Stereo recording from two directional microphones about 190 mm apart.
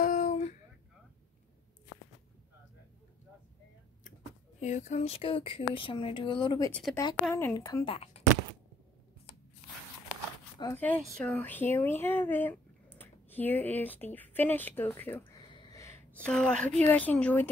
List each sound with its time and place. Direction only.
0.0 s a sound: 45° left (ahead or behind)
4.6 s speech: 35° left (ahead or behind)
6.7 s a woman's voice: centre (ahead or behind)
7.2 s a woman's voice: 10° left (ahead or behind)
7.5 s speech: 20° left (ahead or behind)
10.6 s a woman's voice: 10° left (ahead or behind)
15.3 s a sound: 25° left (ahead or behind); by 17.5 s 10° left (ahead or behind)